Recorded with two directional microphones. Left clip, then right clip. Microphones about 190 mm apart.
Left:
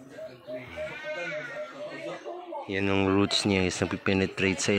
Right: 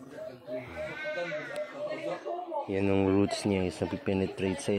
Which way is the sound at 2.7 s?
5° left (ahead or behind).